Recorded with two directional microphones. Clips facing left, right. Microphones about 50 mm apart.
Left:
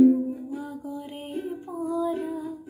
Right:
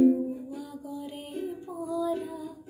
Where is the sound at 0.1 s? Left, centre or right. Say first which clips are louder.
Left 3 dB; left.